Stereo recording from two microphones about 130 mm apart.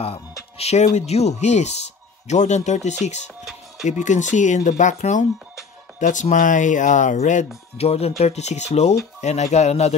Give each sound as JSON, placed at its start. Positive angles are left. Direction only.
{"t": 0.0, "sound": "speech", "side_deg": 50}
{"t": 4.0, "sound": "speech", "side_deg": 70}